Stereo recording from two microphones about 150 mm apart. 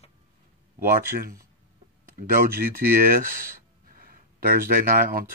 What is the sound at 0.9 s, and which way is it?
Speech, 75° right (ahead or behind).